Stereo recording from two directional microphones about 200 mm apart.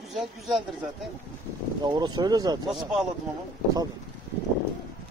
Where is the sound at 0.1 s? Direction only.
Centre (ahead or behind).